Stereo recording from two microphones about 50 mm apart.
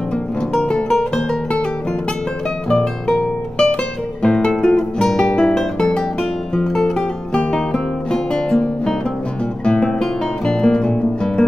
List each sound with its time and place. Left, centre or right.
0.5 s music: centre
2.7 s music: centre